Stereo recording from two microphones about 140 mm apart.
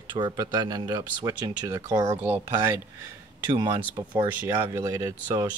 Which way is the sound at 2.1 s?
15° right (ahead or behind).